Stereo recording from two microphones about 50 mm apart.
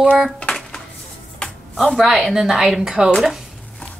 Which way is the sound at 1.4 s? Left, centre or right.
Centre.